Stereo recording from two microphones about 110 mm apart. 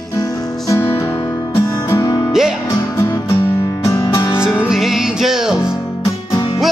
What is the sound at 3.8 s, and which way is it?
Music, 30° left (ahead or behind).